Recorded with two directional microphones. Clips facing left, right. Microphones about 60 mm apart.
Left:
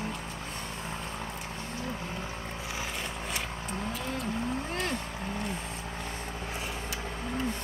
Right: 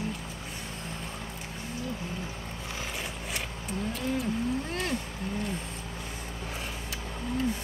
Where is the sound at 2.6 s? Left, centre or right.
Centre.